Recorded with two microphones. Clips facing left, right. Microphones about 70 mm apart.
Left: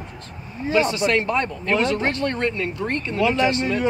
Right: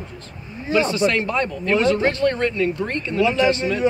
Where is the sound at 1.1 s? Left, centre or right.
Left.